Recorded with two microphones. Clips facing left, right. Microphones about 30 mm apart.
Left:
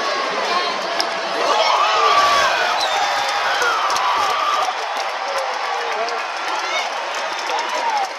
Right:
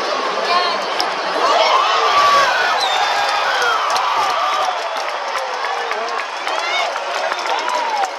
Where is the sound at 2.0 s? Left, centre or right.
Centre.